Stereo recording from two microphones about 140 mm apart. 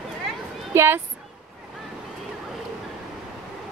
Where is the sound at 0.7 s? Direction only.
20° right (ahead or behind).